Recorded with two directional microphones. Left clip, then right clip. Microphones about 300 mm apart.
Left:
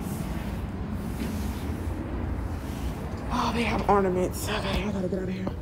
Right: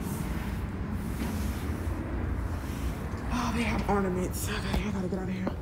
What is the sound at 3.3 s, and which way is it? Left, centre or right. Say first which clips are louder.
A woman's voice: left 5 dB; centre.